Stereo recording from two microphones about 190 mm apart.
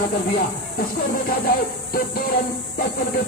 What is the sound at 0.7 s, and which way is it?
Music, 50° left (ahead or behind).